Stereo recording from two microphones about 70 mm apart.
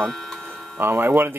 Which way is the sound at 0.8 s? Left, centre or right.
Right.